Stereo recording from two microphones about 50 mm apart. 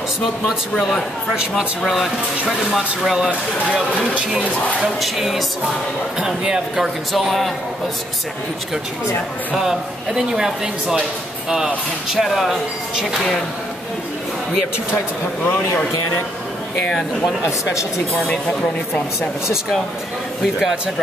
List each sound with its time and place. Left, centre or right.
0.5 s speech: centre
4.8 s a man's voice: centre
7.1 s speech: centre
9.6 s a man's voice: centre
17.5 s speech: left
18.2 s speech: centre